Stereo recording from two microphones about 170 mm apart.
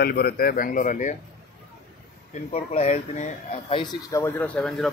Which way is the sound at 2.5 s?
40° left (ahead or behind).